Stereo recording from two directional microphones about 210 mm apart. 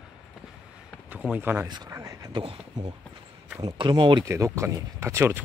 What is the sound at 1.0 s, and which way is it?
Speech, 5° right (ahead or behind).